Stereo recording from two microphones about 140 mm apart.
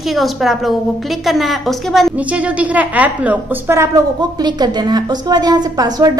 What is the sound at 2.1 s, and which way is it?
A woman's voice, 10° right (ahead or behind).